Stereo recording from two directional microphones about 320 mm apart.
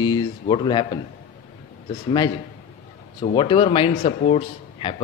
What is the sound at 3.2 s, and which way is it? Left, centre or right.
A man's voice, centre.